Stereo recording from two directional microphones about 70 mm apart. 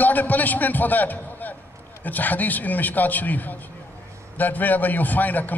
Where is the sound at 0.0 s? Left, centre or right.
Left.